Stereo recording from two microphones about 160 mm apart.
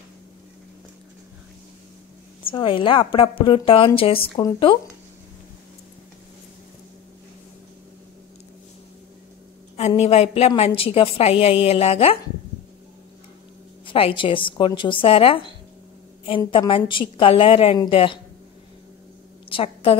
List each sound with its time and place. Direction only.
2.5 s a woman's voice: 35° left (ahead or behind)
9.8 s a woman's voice: 40° left (ahead or behind)
13.8 s a woman's voice: 35° left (ahead or behind)
19.5 s a woman's voice: 35° left (ahead or behind)